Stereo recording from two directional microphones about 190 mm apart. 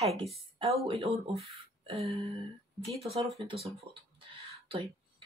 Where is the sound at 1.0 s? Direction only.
30° right (ahead or behind).